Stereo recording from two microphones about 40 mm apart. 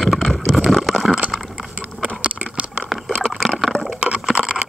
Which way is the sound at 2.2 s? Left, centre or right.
Right.